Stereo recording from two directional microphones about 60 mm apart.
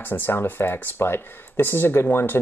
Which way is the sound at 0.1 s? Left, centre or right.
Left.